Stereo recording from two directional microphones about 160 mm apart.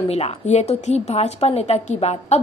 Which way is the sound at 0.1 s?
45° left (ahead or behind).